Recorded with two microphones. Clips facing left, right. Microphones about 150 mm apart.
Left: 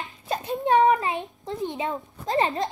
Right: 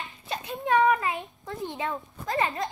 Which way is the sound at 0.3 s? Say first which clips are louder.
Left 4 dB; 35° left (ahead or behind).